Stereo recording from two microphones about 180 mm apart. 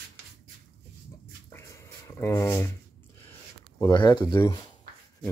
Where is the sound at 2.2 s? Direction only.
15° left (ahead or behind).